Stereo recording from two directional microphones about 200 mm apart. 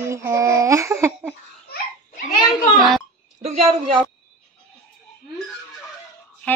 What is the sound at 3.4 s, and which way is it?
Speech, 30° right (ahead or behind).